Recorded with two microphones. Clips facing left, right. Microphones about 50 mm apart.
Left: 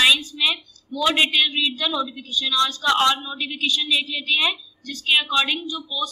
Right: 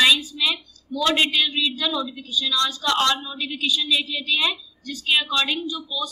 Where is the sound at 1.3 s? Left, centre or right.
Left.